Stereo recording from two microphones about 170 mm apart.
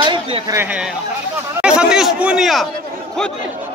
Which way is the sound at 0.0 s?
30° right (ahead or behind).